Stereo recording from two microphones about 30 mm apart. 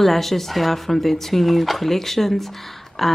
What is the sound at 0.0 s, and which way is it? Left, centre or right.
Speech, centre.